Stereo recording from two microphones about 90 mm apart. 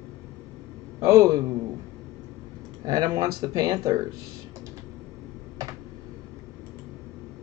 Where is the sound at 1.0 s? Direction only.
40° right (ahead or behind).